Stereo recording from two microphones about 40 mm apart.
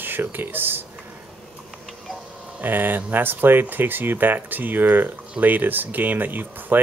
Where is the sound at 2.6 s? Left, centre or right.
Right.